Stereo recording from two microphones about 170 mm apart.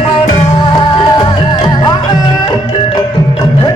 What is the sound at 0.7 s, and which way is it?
Music, 30° left (ahead or behind).